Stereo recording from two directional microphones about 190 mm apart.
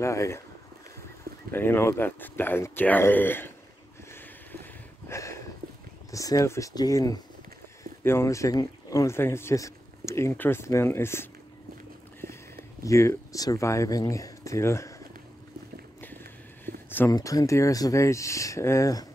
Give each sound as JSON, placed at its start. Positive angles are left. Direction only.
{"t": 0.0, "sound": "speech", "side_deg": 15}
{"t": 1.5, "sound": "speech", "side_deg": 10}
{"t": 5.0, "sound": "a sound", "side_deg": 15}
{"t": 6.1, "sound": "speech", "side_deg": 15}
{"t": 12.8, "sound": "speech", "side_deg": 15}
{"t": 16.6, "sound": "speech", "side_deg": 10}